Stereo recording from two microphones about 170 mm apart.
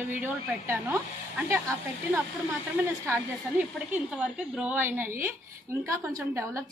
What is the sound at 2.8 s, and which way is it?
A woman's voice, 15° right (ahead or behind).